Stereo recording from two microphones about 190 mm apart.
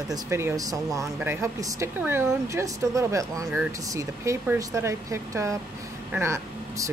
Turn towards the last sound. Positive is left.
turn(degrees=-15)  # may be behind; listen again after turning